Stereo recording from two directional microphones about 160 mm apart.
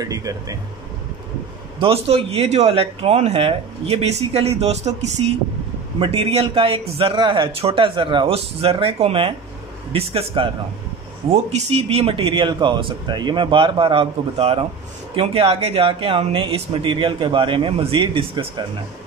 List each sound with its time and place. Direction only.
0.0 s speech: 20° right (ahead or behind)
1.8 s speech: 35° right (ahead or behind)
11.5 s speech: 40° right (ahead or behind)